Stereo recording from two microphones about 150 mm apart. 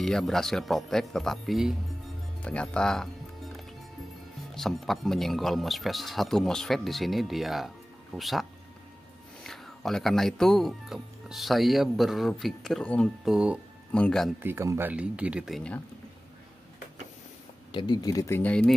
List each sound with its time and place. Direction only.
0.0 s speech: centre (ahead or behind)
4.6 s speech: centre (ahead or behind)
13.9 s speech: 5° left (ahead or behind)
14.4 s speech: 15° right (ahead or behind); by 15.8 s 5° left (ahead or behind)
17.6 s speech: 30° left (ahead or behind)
18.4 s speech: 10° left (ahead or behind)